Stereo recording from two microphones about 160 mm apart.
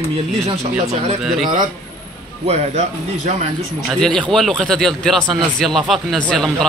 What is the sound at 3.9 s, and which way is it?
Speech, 5° left (ahead or behind).